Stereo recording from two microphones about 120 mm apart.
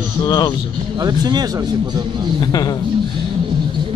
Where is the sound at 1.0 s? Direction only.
35° right (ahead or behind).